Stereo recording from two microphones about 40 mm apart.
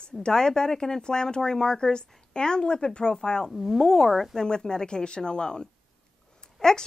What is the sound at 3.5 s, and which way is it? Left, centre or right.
Speech, centre.